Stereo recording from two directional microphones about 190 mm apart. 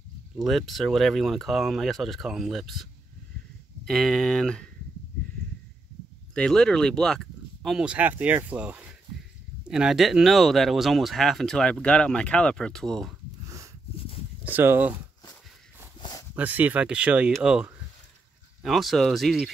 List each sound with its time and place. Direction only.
0.4 s speech: centre (ahead or behind)
6.3 s speech: 5° left (ahead or behind)
14.4 s speech: 10° right (ahead or behind)
16.0 s a sound: 20° left (ahead or behind)
16.3 s speech: 10° right (ahead or behind)